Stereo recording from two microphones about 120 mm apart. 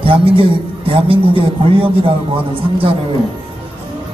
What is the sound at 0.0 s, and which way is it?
A man's voice, 50° right (ahead or behind).